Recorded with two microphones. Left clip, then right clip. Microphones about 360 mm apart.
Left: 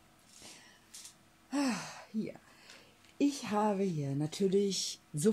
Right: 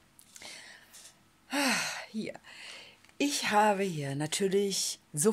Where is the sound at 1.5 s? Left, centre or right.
Right.